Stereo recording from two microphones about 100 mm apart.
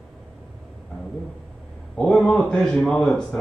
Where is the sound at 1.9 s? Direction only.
10° left (ahead or behind).